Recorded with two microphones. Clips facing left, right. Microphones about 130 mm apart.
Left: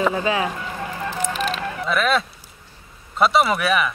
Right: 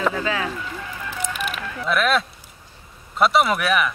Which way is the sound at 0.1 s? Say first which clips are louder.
Left 3 dB; 20° left (ahead or behind).